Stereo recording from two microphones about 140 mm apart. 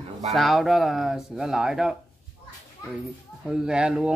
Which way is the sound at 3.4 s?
5° right (ahead or behind).